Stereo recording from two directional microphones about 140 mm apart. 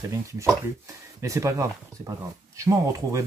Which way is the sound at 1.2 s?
20° right (ahead or behind).